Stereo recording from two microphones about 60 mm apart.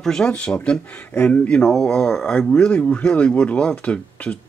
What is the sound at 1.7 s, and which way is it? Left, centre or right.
Speech, centre.